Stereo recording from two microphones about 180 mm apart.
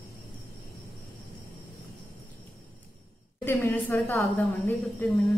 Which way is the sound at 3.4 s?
10° left (ahead or behind).